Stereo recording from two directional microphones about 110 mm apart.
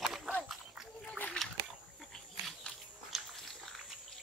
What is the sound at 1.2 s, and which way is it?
Splash, 5° left (ahead or behind).